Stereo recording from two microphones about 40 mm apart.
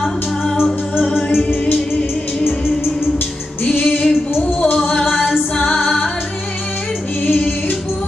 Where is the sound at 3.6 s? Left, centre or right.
Left.